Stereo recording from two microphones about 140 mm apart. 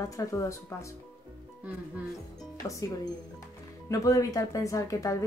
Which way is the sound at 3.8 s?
25° left (ahead or behind).